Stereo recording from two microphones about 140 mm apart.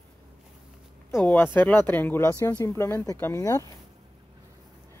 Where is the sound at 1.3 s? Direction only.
15° left (ahead or behind).